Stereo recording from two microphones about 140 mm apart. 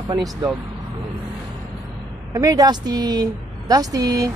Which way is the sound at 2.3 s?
25° right (ahead or behind).